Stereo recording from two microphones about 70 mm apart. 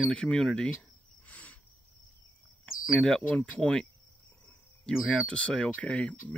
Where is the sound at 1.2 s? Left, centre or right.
Left.